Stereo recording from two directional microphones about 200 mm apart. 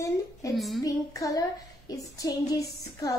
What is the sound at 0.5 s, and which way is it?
Speech, centre (ahead or behind).